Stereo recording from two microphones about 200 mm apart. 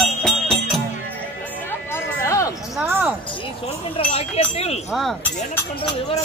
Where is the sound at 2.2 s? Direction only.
15° left (ahead or behind).